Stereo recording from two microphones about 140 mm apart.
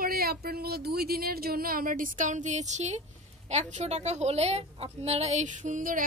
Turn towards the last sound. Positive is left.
turn(degrees=-70)  # may be behind; listen again after turning